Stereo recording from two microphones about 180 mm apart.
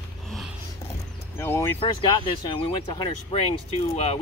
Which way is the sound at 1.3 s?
15° left (ahead or behind).